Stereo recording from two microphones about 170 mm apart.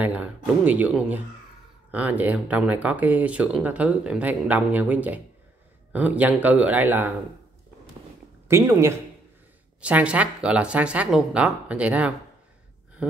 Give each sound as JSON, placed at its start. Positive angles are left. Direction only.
{"t": 0.0, "sound": "speech", "side_deg": -10}
{"t": 8.5, "sound": "speech", "side_deg": -15}